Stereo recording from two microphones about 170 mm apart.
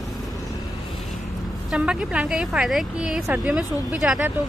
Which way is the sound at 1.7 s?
5° right (ahead or behind).